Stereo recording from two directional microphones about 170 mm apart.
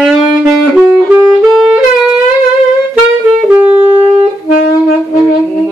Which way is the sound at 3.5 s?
10° right (ahead or behind).